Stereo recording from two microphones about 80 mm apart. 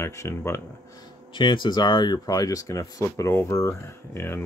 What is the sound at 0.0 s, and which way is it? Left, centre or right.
Speech, left.